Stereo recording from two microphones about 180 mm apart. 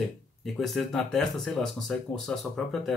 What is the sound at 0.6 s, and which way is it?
Speech, centre (ahead or behind).